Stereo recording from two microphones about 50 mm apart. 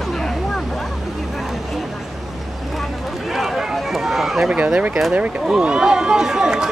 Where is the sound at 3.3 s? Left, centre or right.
Centre.